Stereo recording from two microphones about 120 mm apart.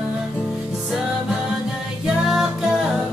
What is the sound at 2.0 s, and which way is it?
Music, 5° right (ahead or behind).